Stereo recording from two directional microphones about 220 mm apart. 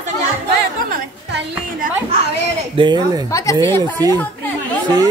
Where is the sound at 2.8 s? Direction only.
20° right (ahead or behind).